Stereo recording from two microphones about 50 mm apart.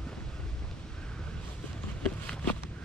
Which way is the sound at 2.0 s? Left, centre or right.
Centre.